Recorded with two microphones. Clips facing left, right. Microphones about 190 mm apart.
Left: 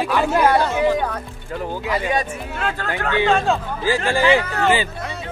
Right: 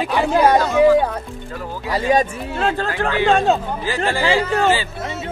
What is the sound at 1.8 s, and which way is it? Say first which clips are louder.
Speech: right 6 dB; 30° right (ahead or behind).